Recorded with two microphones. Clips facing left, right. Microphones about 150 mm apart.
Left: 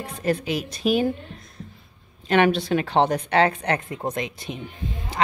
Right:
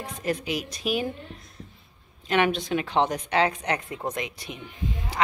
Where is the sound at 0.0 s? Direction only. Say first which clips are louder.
Left 4 dB; 30° left (ahead or behind).